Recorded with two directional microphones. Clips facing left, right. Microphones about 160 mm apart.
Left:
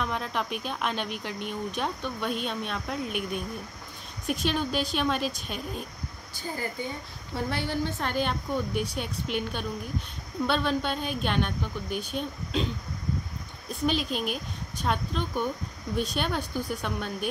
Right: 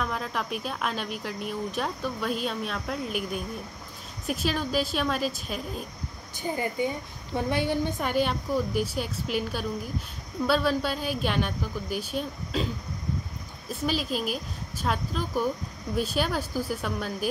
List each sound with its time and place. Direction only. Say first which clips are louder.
0.0 s speech: even; centre (ahead or behind)
6.3 s a woman's voice: right 5 dB; 20° right (ahead or behind)
13.7 s speech: left 1 dB; centre (ahead or behind)